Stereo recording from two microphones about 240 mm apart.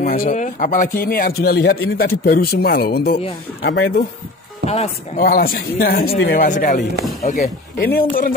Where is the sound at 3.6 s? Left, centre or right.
Left.